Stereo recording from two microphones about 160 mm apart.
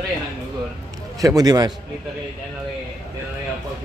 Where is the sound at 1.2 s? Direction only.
20° right (ahead or behind).